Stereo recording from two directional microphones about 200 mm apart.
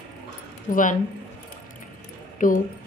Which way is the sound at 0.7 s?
40° left (ahead or behind).